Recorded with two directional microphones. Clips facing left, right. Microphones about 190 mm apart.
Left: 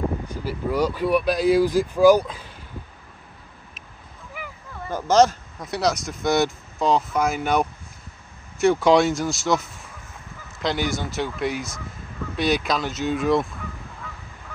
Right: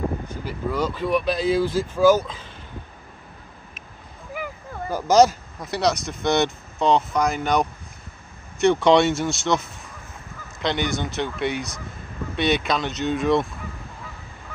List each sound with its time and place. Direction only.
0.3 s speech: 10° left (ahead or behind)
4.3 s a sound: 45° right (ahead or behind)
4.9 s speech: 10° right (ahead or behind)
10.6 s speech: centre (ahead or behind)